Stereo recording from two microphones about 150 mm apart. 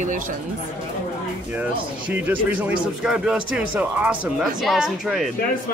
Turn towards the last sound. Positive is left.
turn(degrees=0)  # may be behind; listen again after turning